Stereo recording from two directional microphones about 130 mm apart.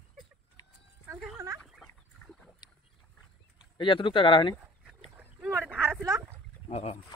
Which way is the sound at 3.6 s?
40° left (ahead or behind).